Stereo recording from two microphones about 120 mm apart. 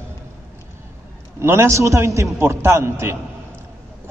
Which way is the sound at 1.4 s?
20° right (ahead or behind).